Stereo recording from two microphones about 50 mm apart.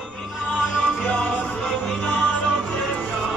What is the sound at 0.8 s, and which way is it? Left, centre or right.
Music, left.